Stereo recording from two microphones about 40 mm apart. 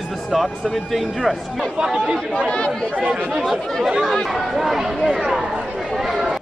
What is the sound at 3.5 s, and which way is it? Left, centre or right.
Speech, centre.